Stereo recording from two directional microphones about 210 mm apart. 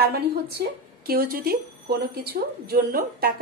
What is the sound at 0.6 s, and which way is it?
Speech, 50° right (ahead or behind).